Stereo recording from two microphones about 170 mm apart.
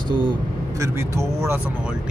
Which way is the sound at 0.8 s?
15° right (ahead or behind).